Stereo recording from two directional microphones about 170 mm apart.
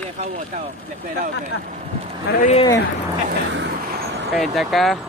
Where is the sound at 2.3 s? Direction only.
65° left (ahead or behind).